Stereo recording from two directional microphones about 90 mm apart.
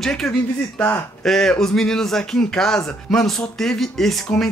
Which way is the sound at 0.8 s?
25° left (ahead or behind).